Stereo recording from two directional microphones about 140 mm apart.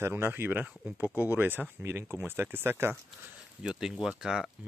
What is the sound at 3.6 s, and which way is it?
Speech, 5° right (ahead or behind).